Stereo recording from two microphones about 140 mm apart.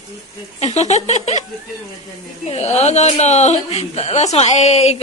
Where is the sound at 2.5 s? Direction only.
50° left (ahead or behind).